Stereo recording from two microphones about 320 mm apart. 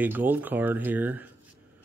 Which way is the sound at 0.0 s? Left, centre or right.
Centre.